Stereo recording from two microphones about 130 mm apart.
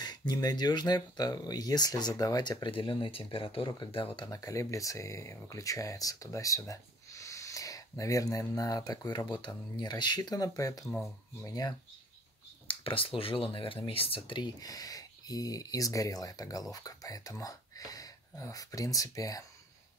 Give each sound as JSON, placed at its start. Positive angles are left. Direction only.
{"t": 0.0, "sound": "speech", "side_deg": 30}
{"t": 4.4, "sound": "speech", "side_deg": 25}
{"t": 12.6, "sound": "speech", "side_deg": 45}